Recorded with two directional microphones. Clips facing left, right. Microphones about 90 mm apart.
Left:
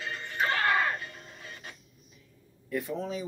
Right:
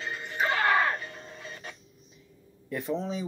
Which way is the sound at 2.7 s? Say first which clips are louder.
Right 1 dB; 20° right (ahead or behind).